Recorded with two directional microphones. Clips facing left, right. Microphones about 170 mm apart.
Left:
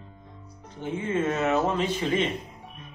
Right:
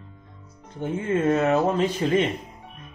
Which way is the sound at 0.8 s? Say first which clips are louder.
Right 3 dB; 40° right (ahead or behind).